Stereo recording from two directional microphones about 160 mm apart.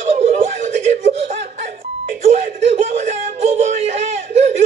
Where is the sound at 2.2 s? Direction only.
45° right (ahead or behind).